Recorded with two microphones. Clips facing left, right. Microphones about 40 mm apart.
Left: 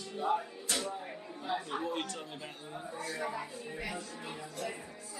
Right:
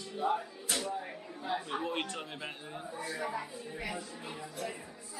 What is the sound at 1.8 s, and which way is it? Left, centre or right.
A man's voice, right.